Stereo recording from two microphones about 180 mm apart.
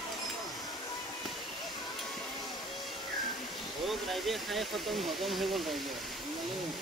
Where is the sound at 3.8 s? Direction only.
Centre (ahead or behind).